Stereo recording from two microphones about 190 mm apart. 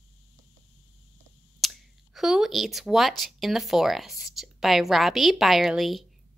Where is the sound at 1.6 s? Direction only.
Centre (ahead or behind).